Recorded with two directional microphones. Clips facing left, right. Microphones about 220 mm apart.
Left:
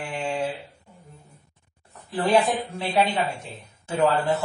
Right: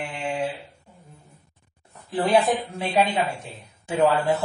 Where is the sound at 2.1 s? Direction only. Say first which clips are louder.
Right 1 dB; 20° right (ahead or behind).